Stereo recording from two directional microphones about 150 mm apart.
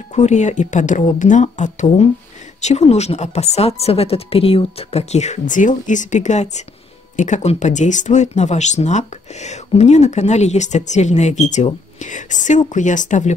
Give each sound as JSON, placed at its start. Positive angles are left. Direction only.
{"t": 0.1, "sound": "speech", "side_deg": 50}